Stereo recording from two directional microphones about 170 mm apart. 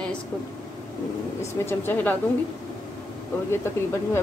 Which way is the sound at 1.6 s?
15° left (ahead or behind).